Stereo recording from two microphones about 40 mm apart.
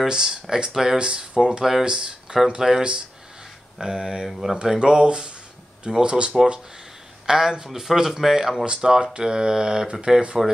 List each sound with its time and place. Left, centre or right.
0.1 s speech: centre
1.6 s speech: centre
1.9 s speech: right
3.8 s speech: centre
4.7 s speech: right
7.2 s speech: centre